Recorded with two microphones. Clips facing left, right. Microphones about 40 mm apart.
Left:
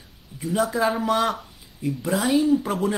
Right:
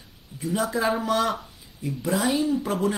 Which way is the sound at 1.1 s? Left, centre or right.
Centre.